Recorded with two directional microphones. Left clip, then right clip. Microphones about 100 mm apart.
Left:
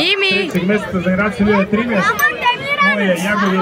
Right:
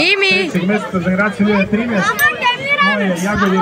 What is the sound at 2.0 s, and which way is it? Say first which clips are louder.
Chatter: right 1 dB; centre (ahead or behind).